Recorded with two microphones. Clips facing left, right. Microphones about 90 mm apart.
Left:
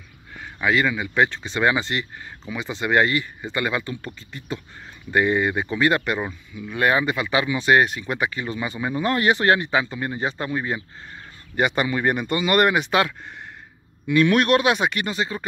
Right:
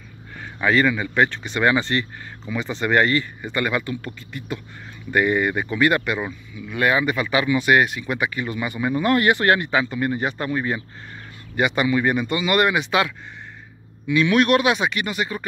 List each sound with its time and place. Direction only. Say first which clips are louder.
0.6 s speech: right 2 dB; 10° left (ahead or behind)
11.5 s speech: right 2 dB; 40° left (ahead or behind)